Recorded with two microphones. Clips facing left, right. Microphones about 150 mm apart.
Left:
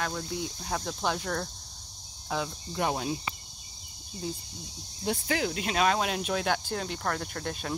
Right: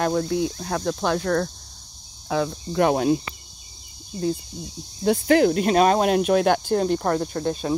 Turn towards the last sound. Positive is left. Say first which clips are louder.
# right 10 dB
turn(degrees=-15)  # may be behind; listen again after turning